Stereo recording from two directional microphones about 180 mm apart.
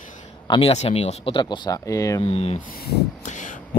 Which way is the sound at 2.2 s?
35° left (ahead or behind).